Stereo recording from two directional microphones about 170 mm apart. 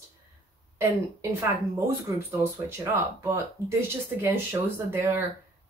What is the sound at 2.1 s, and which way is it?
Speech, 15° right (ahead or behind).